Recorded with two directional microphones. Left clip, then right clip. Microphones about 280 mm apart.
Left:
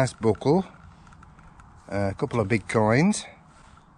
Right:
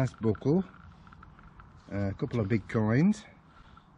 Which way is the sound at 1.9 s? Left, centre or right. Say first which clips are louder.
Left 8 dB; left.